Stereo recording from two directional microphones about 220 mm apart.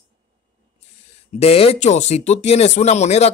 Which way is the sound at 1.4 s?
25° left (ahead or behind).